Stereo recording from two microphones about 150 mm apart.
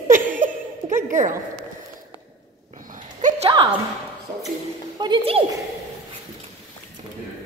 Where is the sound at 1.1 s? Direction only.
55° right (ahead or behind).